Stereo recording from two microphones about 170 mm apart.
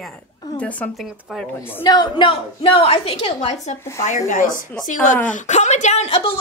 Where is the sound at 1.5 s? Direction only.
10° left (ahead or behind).